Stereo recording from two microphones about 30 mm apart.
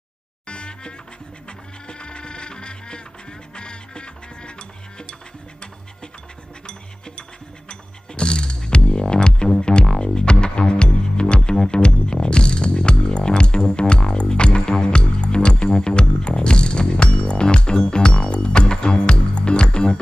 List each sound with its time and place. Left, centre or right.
0.5 s music: left
6.6 s music: left